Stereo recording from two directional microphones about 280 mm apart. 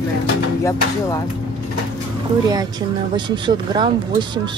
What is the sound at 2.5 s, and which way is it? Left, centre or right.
Speech, centre.